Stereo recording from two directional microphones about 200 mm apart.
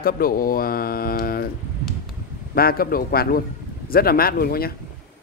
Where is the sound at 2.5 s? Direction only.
50° left (ahead or behind).